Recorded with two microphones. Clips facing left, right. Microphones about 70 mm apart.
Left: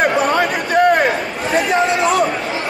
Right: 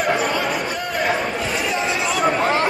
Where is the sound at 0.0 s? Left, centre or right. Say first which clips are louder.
Left 5 dB; left.